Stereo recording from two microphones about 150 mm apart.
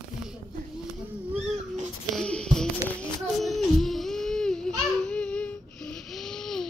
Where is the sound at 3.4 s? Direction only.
Centre (ahead or behind).